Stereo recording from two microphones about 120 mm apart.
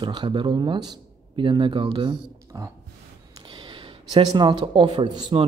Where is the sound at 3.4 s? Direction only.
45° right (ahead or behind).